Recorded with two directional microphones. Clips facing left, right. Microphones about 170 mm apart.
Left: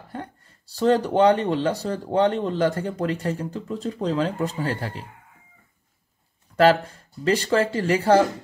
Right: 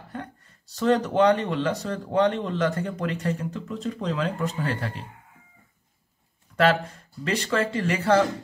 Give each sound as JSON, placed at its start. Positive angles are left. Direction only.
{"t": 0.1, "sound": "speech", "side_deg": 35}
{"t": 6.5, "sound": "speech", "side_deg": 35}